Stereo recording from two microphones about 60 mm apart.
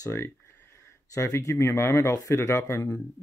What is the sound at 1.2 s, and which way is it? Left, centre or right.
Speech, left.